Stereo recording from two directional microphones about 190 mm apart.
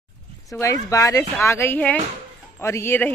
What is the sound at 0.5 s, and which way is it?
Speech, 15° left (ahead or behind).